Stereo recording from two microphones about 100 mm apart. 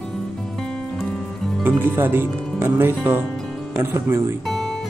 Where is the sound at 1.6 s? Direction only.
20° right (ahead or behind).